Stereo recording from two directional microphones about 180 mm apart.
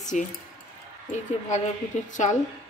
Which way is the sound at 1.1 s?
40° left (ahead or behind).